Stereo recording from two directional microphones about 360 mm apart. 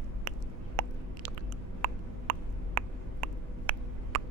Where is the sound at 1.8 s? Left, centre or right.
Right.